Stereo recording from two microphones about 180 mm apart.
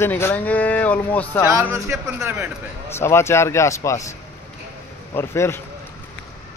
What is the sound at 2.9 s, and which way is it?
Speech, 15° left (ahead or behind).